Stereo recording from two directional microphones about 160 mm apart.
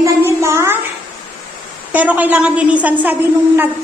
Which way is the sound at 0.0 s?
15° right (ahead or behind).